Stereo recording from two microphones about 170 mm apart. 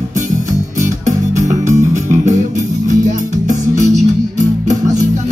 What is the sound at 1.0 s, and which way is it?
Music, 45° right (ahead or behind).